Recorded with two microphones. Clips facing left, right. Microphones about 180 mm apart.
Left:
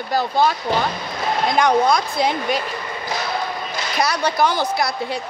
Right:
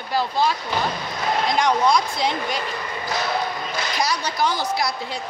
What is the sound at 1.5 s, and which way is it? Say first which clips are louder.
Speech: left 3 dB; 55° left (ahead or behind).